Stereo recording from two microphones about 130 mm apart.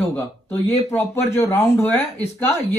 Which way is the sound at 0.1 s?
15° left (ahead or behind).